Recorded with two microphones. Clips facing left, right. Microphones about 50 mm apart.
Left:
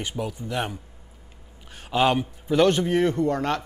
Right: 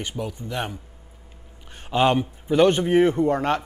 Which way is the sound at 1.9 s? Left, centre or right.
Centre.